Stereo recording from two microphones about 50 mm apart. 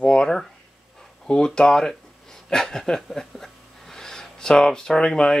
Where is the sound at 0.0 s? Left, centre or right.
Left.